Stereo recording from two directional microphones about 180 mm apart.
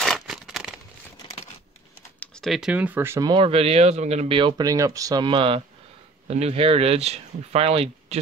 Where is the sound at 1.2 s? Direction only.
30° left (ahead or behind).